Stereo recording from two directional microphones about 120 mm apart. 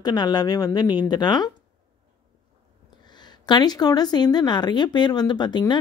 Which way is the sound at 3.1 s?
35° left (ahead or behind).